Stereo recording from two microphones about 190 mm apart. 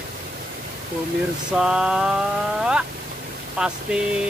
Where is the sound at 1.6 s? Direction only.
5° right (ahead or behind).